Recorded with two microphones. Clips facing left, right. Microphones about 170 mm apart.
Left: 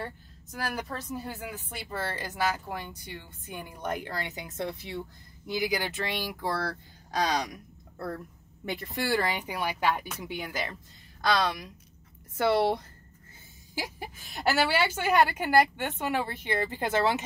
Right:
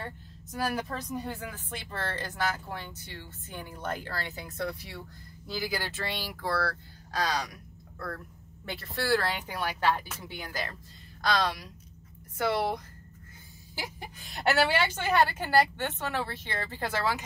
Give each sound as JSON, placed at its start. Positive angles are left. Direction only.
{"t": 0.7, "sound": "speech", "side_deg": 0}
{"t": 8.6, "sound": "speech", "side_deg": 15}
{"t": 13.9, "sound": "speech", "side_deg": 0}